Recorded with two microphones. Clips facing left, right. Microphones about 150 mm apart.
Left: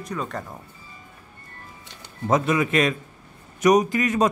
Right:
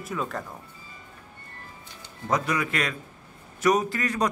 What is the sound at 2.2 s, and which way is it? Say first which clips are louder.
A man's voice: left 5 dB; 25° left (ahead or behind).